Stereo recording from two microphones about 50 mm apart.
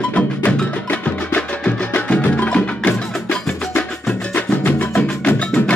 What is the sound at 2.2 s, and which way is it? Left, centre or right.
Wood block, left.